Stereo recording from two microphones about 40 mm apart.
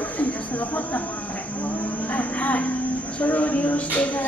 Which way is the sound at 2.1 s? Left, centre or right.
Left.